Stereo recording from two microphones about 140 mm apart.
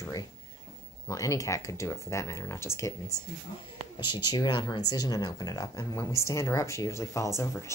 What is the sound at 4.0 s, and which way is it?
Speech, 30° left (ahead or behind).